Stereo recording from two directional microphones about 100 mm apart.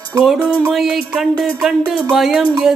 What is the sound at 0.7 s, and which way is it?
Music, 5° right (ahead or behind).